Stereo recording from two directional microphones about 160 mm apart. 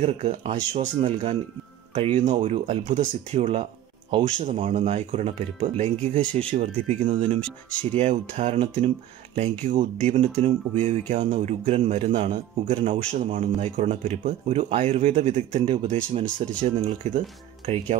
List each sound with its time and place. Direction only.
0.0 s speech: 40° right (ahead or behind)
2.0 s speech: 30° right (ahead or behind)
2.9 s speech: 45° right (ahead or behind)
4.4 s speech: 50° right (ahead or behind); by 7.3 s 35° right (ahead or behind)
7.3 s speech: 5° left (ahead or behind)
7.9 s speech: 40° right (ahead or behind)